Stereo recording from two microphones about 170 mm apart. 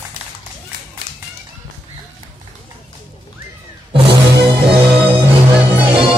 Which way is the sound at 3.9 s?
30° right (ahead or behind).